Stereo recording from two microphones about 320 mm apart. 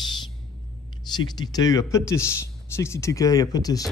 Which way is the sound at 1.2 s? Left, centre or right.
Centre.